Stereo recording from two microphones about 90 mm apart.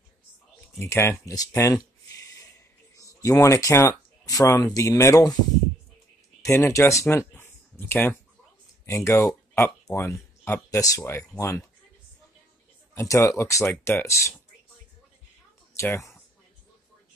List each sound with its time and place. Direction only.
0.7 s speech: 30° left (ahead or behind)
1.6 s a sound: 35° left (ahead or behind)
3.3 s speech: 35° left (ahead or behind)
6.4 s speech: 35° left (ahead or behind)
12.9 s speech: 35° left (ahead or behind)
15.7 s speech: 30° left (ahead or behind)